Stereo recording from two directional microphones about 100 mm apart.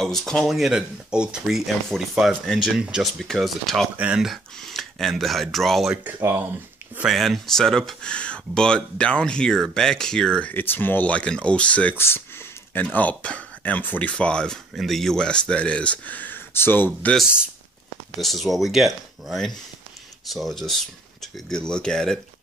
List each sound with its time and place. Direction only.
0.0 s speech: 5° left (ahead or behind)
2.8 s speech: 10° right (ahead or behind)
3.9 s speech: 15° right (ahead or behind)
4.2 s speech: centre (ahead or behind)
6.2 s speech: 25° right (ahead or behind)
7.1 s speech: centre (ahead or behind)
10.5 s speech: 20° left (ahead or behind)
12.0 s speech: 25° left (ahead or behind)
18.2 s speech: centre (ahead or behind)